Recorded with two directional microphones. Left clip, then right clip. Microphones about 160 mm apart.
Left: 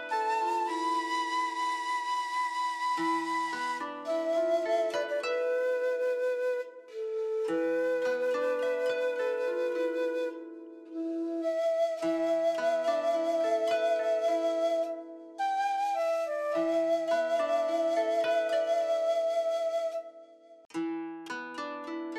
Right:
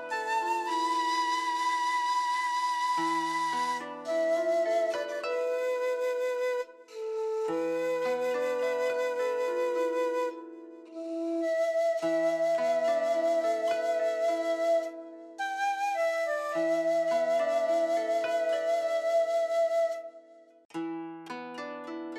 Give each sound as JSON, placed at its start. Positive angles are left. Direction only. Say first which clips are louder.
{"t": 0.1, "sound": "flute", "louder": "left 1 dB", "side_deg": -10}
{"t": 0.7, "sound": "music", "louder": "right 2 dB", "side_deg": -25}
{"t": 3.7, "sound": "music", "louder": "right 1 dB", "side_deg": -5}
{"t": 7.4, "sound": "flute", "louder": "left 3 dB", "side_deg": 0}
{"t": 9.9, "sound": "flute", "louder": "right 2 dB", "side_deg": -15}
{"t": 11.4, "sound": "flute", "louder": "right 1 dB", "side_deg": -5}
{"t": 16.5, "sound": "music", "louder": "right 1 dB", "side_deg": -5}
{"t": 20.7, "sound": "music", "louder": "left 1 dB", "side_deg": 0}